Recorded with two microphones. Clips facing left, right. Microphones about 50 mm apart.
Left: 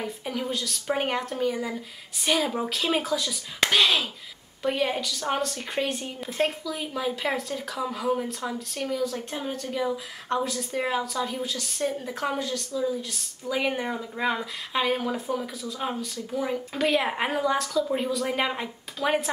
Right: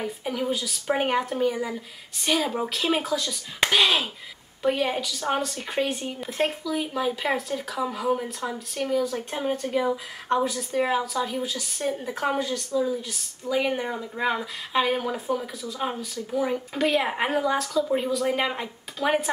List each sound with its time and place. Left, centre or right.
0.0 s a woman's voice: centre
3.6 s a woman's voice: centre
9.3 s a woman's voice: centre
12.8 s speech: centre